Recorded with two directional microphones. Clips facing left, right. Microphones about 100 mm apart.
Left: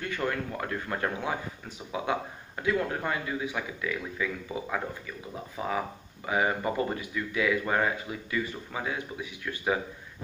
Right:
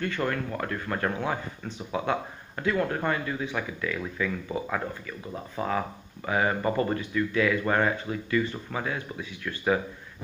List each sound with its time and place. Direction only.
0.2 s speech: 15° right (ahead or behind)
0.6 s speech: 15° left (ahead or behind)